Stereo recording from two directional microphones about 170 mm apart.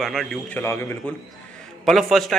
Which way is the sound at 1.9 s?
Centre (ahead or behind).